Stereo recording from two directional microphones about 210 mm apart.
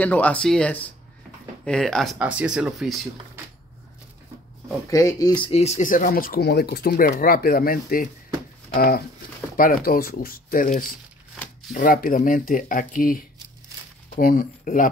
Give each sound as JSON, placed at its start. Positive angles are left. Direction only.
{"t": 0.0, "sound": "speech", "side_deg": 5}
{"t": 4.8, "sound": "speech", "side_deg": 15}
{"t": 11.3, "sound": "shuffling cards", "side_deg": 5}
{"t": 11.7, "sound": "speech", "side_deg": 40}